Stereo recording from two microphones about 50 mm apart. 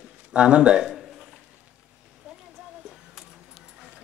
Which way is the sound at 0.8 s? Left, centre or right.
Centre.